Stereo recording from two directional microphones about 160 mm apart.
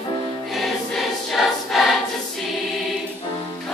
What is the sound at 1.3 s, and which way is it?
Choir, centre (ahead or behind).